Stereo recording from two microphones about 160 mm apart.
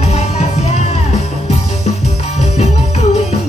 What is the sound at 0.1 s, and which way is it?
Music, 45° left (ahead or behind).